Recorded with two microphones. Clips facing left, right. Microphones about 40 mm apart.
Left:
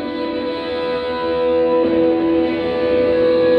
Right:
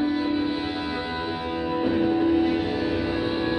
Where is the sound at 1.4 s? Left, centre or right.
Left.